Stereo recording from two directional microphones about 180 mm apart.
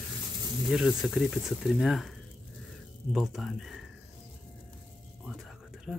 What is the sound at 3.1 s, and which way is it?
Speech, centre (ahead or behind).